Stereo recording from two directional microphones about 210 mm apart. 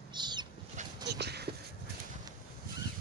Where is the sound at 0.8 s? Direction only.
35° right (ahead or behind).